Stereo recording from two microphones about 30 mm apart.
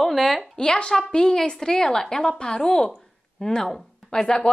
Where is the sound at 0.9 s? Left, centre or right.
Left.